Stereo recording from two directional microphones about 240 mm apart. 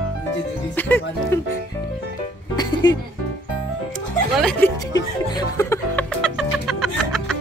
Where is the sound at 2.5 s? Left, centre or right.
Centre.